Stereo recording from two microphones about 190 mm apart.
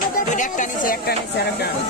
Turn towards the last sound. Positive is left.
turn(degrees=45)  # may be behind; listen again after turning